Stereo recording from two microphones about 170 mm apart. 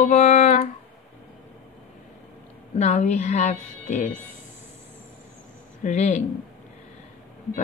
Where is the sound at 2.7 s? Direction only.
45° left (ahead or behind).